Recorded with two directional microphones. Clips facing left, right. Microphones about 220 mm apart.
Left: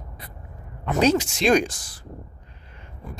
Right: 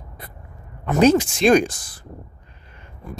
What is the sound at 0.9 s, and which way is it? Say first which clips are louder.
Speech: right 5 dB; 50° right (ahead or behind).